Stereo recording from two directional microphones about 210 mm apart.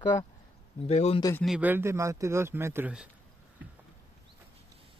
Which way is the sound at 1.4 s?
5° right (ahead or behind).